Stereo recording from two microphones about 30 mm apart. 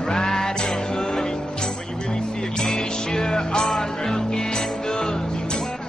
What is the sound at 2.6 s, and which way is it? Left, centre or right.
Music, left.